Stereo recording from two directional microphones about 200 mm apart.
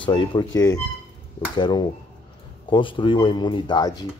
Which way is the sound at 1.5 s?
20° left (ahead or behind).